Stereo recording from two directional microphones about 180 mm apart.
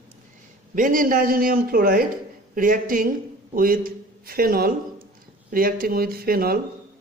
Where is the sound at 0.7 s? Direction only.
50° right (ahead or behind).